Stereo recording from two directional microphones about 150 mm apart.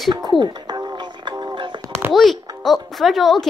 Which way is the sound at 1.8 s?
10° right (ahead or behind).